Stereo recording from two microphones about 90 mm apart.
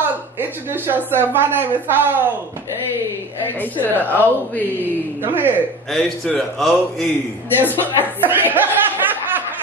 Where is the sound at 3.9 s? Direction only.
20° left (ahead or behind).